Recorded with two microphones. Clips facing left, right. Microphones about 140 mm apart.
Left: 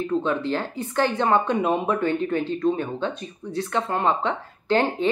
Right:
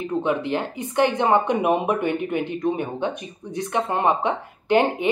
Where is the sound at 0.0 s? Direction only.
15° right (ahead or behind).